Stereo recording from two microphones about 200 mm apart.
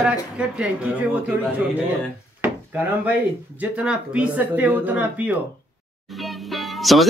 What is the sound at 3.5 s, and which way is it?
Speech, 5° right (ahead or behind).